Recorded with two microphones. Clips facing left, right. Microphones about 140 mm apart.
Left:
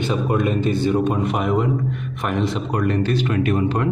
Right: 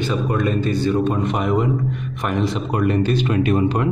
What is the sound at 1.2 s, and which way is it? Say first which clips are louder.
Speech: right 1 dB; 5° left (ahead or behind).